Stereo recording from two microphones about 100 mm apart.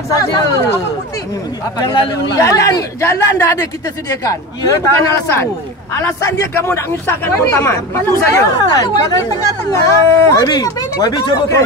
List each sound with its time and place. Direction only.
0.1 s speech: 30° left (ahead or behind)
2.3 s speech: 35° left (ahead or behind)